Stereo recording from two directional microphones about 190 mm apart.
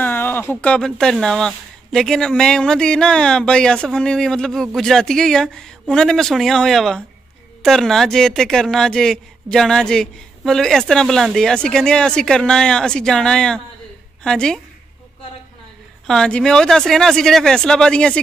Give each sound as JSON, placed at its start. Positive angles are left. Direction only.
{"t": 0.0, "sound": "speech", "side_deg": 10}
{"t": 16.1, "sound": "speech", "side_deg": 5}